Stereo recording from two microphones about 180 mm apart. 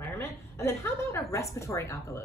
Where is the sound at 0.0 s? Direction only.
15° left (ahead or behind).